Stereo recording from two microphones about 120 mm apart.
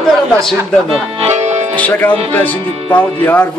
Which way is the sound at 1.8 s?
10° left (ahead or behind).